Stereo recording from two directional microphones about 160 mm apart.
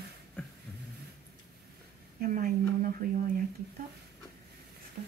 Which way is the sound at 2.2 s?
60° right (ahead or behind).